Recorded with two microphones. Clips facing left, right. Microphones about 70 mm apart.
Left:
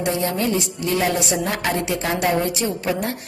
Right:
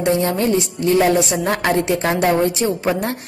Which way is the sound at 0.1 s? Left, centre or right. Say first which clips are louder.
Right 5 dB; right.